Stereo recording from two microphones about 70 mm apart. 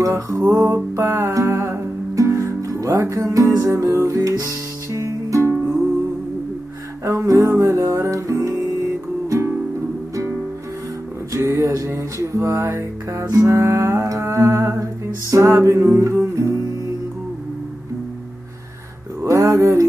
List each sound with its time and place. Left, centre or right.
0.0 s music: right
7.1 s music: right
11.3 s music: right
13.2 s music: right
13.5 s music: right
19.2 s a sound: right